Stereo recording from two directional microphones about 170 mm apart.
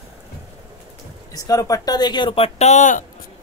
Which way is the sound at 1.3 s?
20° left (ahead or behind).